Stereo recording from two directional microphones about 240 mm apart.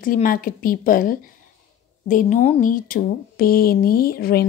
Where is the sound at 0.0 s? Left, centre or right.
Left.